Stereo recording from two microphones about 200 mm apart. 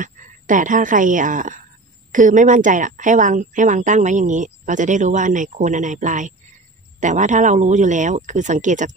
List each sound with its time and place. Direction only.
0.0 s a woman's voice: 40° right (ahead or behind)